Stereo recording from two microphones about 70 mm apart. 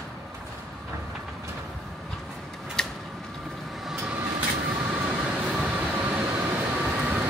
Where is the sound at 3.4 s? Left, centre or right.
Centre.